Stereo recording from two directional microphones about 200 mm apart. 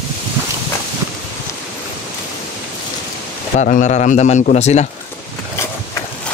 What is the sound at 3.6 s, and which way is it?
A man's voice, 40° left (ahead or behind).